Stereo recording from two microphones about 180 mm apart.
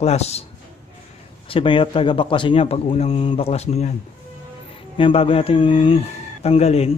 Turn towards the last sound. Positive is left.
turn(degrees=35)  # may be behind; listen again after turning